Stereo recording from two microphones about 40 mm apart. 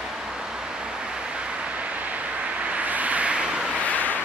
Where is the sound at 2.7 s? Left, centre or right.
Right.